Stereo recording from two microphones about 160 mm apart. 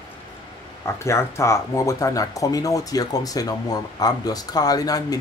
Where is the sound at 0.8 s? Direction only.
15° left (ahead or behind).